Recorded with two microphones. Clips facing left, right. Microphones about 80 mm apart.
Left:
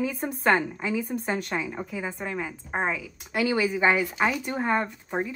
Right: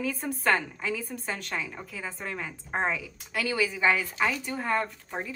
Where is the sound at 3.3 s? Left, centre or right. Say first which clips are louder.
Left 4 dB; centre.